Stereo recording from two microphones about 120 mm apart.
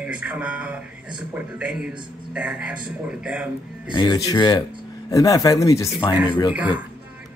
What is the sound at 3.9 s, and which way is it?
Speech, 35° left (ahead or behind).